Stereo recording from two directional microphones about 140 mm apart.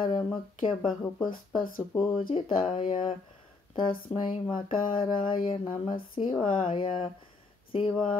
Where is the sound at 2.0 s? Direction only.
40° left (ahead or behind).